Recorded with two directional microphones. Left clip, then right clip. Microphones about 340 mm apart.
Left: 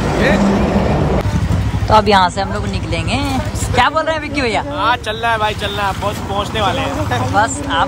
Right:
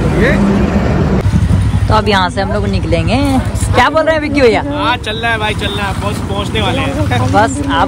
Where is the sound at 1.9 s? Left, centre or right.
Centre.